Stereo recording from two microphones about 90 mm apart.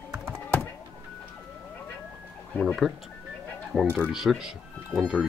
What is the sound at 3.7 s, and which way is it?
Speech, 20° right (ahead or behind).